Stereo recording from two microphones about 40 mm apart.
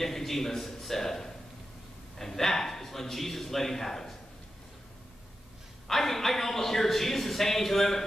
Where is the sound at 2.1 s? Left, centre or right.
Centre.